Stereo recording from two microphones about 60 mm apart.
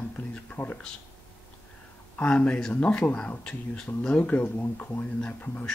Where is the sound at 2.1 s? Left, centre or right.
Left.